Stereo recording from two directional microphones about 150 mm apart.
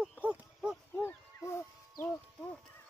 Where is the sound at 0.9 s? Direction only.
15° left (ahead or behind).